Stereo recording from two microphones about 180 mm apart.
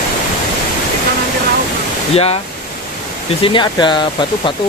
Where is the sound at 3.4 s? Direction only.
25° left (ahead or behind).